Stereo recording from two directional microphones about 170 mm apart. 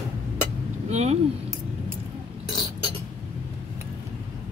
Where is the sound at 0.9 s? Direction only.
40° right (ahead or behind).